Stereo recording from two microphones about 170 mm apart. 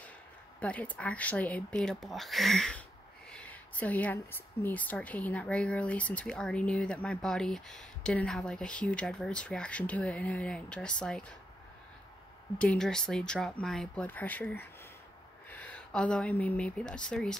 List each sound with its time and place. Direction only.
0.6 s speech: 10° left (ahead or behind)
12.5 s speech: 5° left (ahead or behind)